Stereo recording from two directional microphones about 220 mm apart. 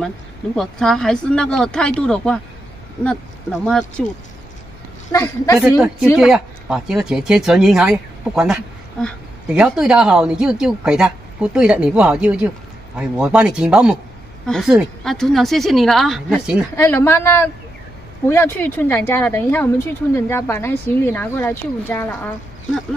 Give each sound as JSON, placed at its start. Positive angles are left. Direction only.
{"t": 0.6, "sound": "speech", "side_deg": 0}
{"t": 3.6, "sound": "speech", "side_deg": 5}
{"t": 5.1, "sound": "speech", "side_deg": 15}
{"t": 5.6, "sound": "speech", "side_deg": -5}
{"t": 16.7, "sound": "speech", "side_deg": 10}